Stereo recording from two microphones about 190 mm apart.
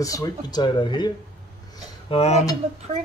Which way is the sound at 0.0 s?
20° left (ahead or behind).